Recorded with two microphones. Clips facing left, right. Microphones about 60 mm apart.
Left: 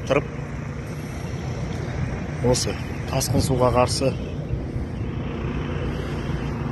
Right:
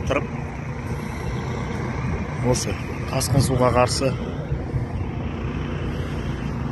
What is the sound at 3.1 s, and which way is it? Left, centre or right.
Speech, right.